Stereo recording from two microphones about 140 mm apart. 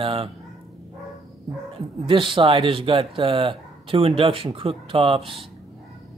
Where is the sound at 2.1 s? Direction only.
35° right (ahead or behind).